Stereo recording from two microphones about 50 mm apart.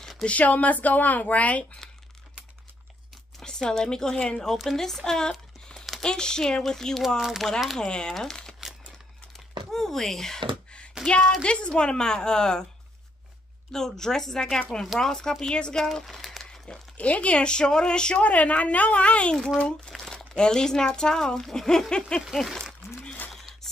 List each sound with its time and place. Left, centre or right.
0.2 s speech: left
1.8 s crumpling: centre
3.3 s a sound: centre
3.7 s speech: centre
7.2 s speech: centre
7.7 s speech: centre
9.7 s speech: centre
11.1 s speech: centre
13.7 s speech: centre
16.1 s a sound: centre
16.9 s speech: left
18.2 s speech: left
19.9 s speech: centre
22.3 s a sound: centre